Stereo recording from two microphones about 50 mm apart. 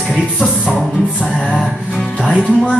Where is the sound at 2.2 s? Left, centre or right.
Centre.